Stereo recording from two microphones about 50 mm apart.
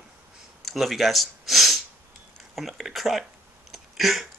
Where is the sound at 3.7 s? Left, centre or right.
Centre.